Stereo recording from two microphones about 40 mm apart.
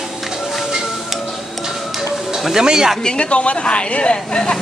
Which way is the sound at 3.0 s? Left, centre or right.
Left.